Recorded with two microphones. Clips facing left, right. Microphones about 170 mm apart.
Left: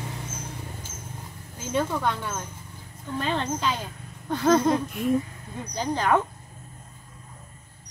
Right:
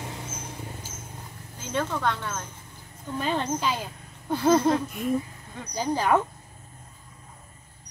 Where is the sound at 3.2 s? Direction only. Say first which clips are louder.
Even; 10° right (ahead or behind).